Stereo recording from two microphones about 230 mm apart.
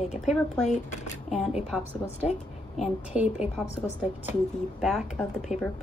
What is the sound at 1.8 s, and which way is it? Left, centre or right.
Speech, left.